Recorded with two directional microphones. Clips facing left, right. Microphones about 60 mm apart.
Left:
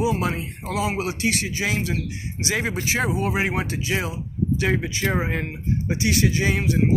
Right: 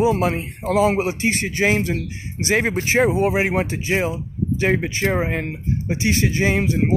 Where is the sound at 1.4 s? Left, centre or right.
Right.